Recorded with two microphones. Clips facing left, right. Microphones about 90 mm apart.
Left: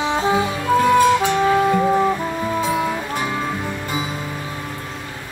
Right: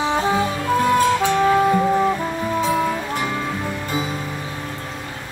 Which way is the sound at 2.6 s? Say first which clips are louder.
Right 2 dB; 15° left (ahead or behind).